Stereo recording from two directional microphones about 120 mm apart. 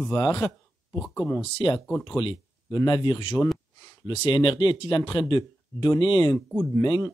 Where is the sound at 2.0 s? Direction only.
40° left (ahead or behind).